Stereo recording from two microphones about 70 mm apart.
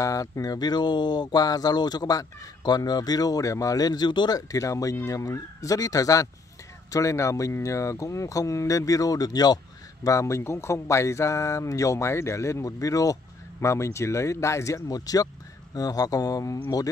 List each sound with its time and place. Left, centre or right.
0.0 s speech: left
4.4 s speech: left
10.0 s speech: left
15.0 s speech: left